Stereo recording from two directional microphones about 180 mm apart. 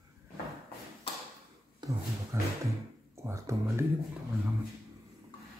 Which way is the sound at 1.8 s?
25° right (ahead or behind).